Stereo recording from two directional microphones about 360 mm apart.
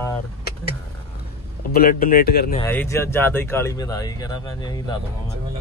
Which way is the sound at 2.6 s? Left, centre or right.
Centre.